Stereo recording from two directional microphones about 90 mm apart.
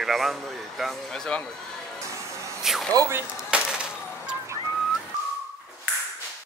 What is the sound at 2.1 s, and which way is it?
Music, 35° right (ahead or behind).